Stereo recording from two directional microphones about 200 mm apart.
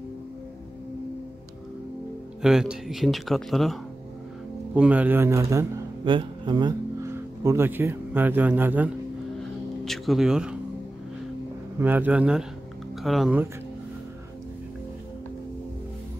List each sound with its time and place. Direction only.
2.4 s a man's voice: 5° right (ahead or behind)
11.8 s a man's voice: 10° right (ahead or behind)